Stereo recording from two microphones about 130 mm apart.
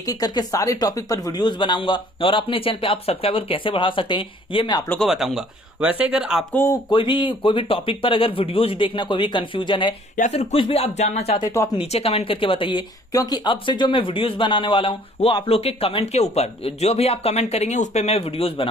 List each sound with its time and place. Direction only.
0.0 s speech: 30° left (ahead or behind)
5.0 s speech: centre (ahead or behind)
6.5 s speech: 20° left (ahead or behind)
6.9 s speech: 35° left (ahead or behind)
10.3 s speech: 50° left (ahead or behind)
11.6 s speech: 20° left (ahead or behind)
11.9 s speech: 50° left (ahead or behind)